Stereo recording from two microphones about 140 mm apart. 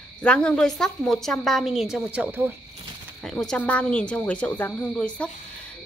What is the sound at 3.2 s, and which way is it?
Speech, 5° left (ahead or behind).